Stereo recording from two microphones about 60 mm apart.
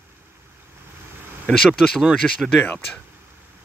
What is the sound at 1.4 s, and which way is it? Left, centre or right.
Speech, centre.